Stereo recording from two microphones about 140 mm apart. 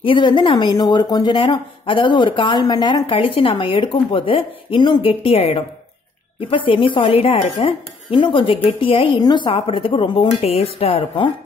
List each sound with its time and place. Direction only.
0.0 s speech: 35° left (ahead or behind)